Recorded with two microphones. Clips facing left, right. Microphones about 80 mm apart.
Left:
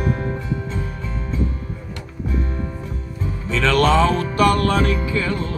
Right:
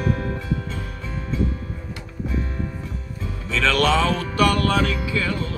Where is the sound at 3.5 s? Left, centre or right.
Left.